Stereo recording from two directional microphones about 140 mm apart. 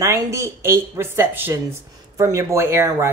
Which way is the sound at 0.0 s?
20° right (ahead or behind).